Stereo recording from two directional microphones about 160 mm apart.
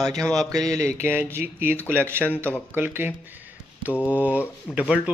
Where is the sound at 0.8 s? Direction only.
45° left (ahead or behind).